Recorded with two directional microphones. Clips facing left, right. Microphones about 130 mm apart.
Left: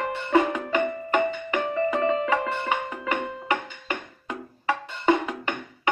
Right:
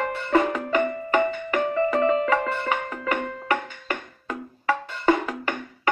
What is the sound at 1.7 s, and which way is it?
Music, 40° right (ahead or behind).